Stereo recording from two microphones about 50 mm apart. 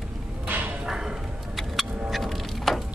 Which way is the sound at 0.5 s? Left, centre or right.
Right.